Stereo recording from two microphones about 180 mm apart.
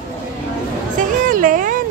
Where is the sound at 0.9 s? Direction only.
50° right (ahead or behind).